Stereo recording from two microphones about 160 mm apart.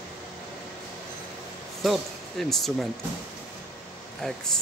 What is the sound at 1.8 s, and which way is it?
Speech, centre (ahead or behind).